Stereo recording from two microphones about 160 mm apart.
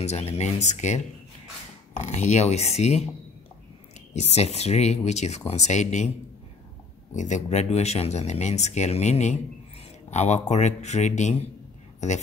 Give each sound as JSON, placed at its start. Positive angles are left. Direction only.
{"t": 0.0, "sound": "speech", "side_deg": 40}
{"t": 4.1, "sound": "speech", "side_deg": 45}
{"t": 7.2, "sound": "speech", "side_deg": 50}